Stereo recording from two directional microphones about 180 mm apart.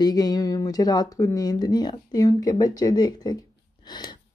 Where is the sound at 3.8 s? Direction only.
25° left (ahead or behind).